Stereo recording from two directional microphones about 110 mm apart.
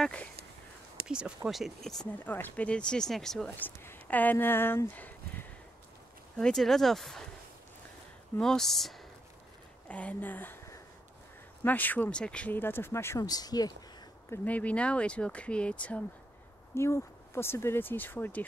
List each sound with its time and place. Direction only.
0.0 s speech: 10° left (ahead or behind)
1.0 s speech: 10° right (ahead or behind)
2.2 s speech: 15° left (ahead or behind)
3.5 s speech: 20° left (ahead or behind)
6.3 s speech: 5° left (ahead or behind)
8.4 s speech: 5° left (ahead or behind)
9.8 s speech: 10° left (ahead or behind); by 13.7 s 35° left (ahead or behind)
14.3 s speech: 15° left (ahead or behind)
16.7 s speech: 25° left (ahead or behind)